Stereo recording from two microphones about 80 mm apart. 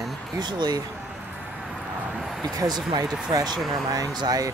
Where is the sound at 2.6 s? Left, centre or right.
Right.